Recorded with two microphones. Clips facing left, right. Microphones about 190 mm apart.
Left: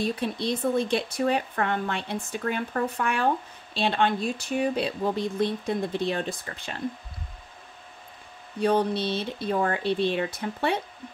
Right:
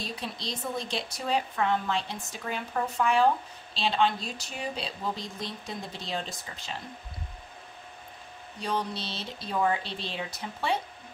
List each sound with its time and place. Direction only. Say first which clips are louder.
0.0 s speech: left 9 dB; 55° left (ahead or behind)
8.5 s speech: left 9 dB; 60° left (ahead or behind)